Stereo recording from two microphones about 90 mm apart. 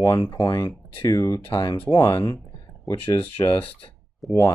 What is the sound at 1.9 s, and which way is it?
Speech, 45° left (ahead or behind).